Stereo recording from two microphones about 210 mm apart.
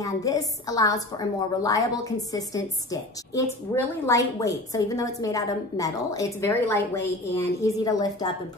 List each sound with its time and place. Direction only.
0.0 s a woman's voice: 15° left (ahead or behind)